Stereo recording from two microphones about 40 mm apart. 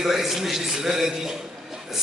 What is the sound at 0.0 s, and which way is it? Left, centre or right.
A man's voice, centre.